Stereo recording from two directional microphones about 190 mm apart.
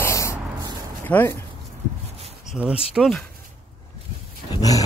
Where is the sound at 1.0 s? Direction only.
10° left (ahead or behind).